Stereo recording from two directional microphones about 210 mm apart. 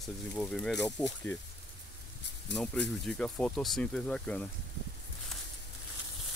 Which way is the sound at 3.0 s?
5° left (ahead or behind).